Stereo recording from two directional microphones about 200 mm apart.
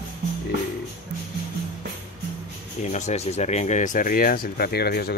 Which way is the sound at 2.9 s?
35° left (ahead or behind).